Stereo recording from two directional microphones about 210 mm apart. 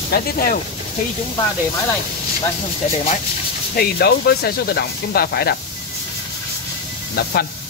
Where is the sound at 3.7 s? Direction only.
45° left (ahead or behind).